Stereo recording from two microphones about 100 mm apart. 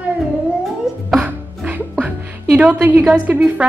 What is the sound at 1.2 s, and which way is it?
Music, 15° right (ahead or behind).